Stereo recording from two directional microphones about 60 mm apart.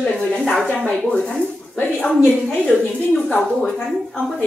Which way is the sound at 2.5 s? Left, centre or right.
Centre.